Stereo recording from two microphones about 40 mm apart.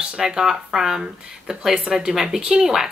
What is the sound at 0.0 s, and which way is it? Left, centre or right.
A woman's voice, centre.